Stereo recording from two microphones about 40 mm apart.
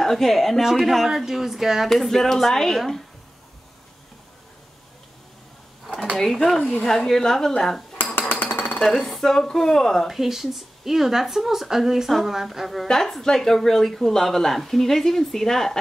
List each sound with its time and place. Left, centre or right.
0.0 s a woman's voice: centre
1.9 s a woman's voice: centre
6.1 s speech: centre
8.0 s a sound: left
8.8 s speech: centre
10.0 s a woman's voice: centre
12.9 s speech: centre